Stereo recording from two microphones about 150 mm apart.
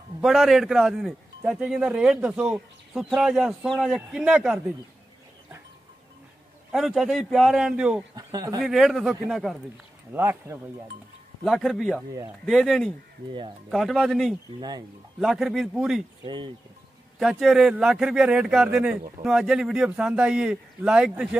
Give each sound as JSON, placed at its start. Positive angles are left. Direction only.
{"t": 0.2, "sound": "a man's voice", "side_deg": 0}
{"t": 6.7, "sound": "a man's voice", "side_deg": 0}
{"t": 8.2, "sound": "speech", "side_deg": -25}
{"t": 8.5, "sound": "a man's voice", "side_deg": 0}
{"t": 10.1, "sound": "speech", "side_deg": -15}
{"t": 11.4, "sound": "a man's voice", "side_deg": 0}
{"t": 16.3, "sound": "speech", "side_deg": -30}
{"t": 17.2, "sound": "a man's voice", "side_deg": 0}